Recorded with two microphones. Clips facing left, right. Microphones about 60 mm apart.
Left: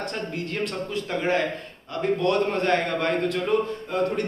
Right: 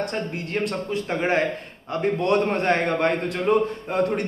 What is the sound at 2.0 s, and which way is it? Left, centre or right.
A man's voice, centre.